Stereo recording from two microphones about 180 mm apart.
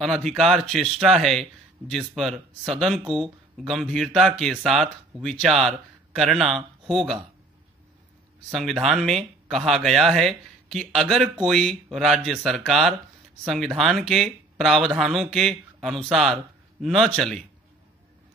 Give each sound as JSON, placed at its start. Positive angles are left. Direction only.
{"t": 0.0, "sound": "speech", "side_deg": 0}
{"t": 8.5, "sound": "speech", "side_deg": 0}